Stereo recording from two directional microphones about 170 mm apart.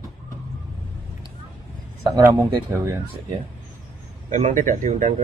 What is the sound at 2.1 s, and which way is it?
Speech, 15° right (ahead or behind).